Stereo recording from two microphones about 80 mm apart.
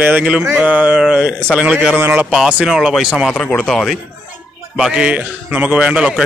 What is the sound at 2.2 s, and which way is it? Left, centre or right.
A man's voice, centre.